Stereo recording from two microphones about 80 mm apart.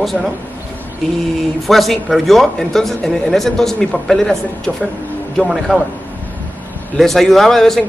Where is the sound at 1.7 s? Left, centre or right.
Centre.